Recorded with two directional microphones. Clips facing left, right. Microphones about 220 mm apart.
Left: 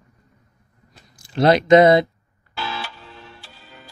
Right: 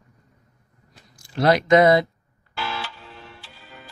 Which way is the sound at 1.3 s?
25° left (ahead or behind).